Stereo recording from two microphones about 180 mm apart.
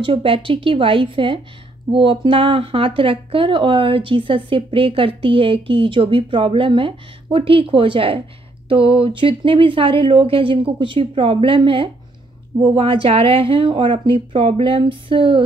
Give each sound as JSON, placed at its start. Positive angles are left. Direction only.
{"t": 0.0, "sound": "speech", "side_deg": -30}